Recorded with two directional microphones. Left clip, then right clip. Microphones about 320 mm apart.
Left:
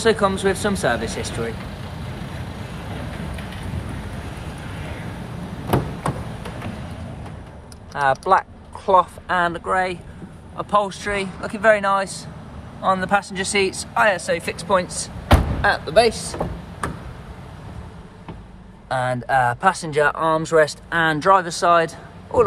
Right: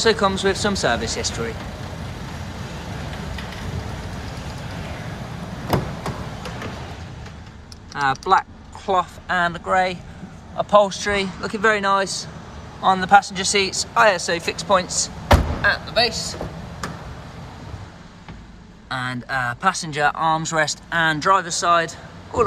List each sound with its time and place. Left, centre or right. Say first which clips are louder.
0.0 s speech: even; centre
7.9 s speech: left 1 dB; centre
15.9 s speech: left 4 dB; centre
18.9 s speech: left 5 dB; centre